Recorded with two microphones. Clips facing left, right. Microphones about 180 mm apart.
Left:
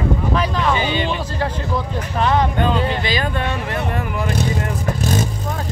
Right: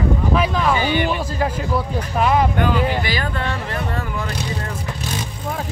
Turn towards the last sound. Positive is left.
turn(degrees=45)  # may be behind; listen again after turning